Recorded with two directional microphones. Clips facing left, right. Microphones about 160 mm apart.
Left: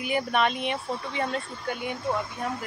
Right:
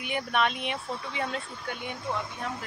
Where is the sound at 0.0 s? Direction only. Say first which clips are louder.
Left 3 dB; 5° left (ahead or behind).